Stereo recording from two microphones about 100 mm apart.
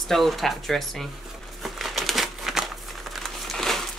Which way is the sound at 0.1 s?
Centre (ahead or behind).